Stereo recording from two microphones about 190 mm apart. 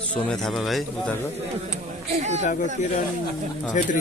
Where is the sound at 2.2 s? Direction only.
35° right (ahead or behind).